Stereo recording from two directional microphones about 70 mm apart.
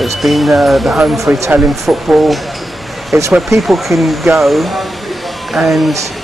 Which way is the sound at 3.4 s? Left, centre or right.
Centre.